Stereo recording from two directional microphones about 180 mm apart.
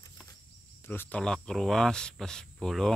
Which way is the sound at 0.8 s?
10° left (ahead or behind).